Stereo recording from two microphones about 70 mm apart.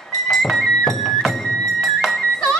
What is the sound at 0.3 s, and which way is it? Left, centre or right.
Music, centre.